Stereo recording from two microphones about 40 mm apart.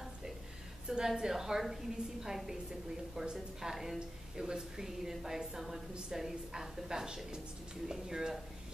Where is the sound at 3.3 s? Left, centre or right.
Centre.